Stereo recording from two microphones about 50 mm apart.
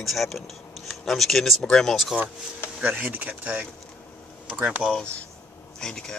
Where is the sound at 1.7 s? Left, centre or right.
Centre.